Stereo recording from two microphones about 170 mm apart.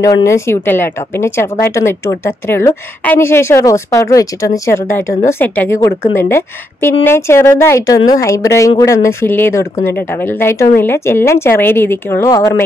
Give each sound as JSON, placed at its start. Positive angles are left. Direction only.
{"t": 0.0, "sound": "a woman's voice", "side_deg": 20}